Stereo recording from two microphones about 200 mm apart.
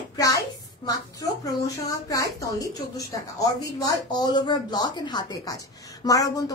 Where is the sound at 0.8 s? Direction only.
15° left (ahead or behind).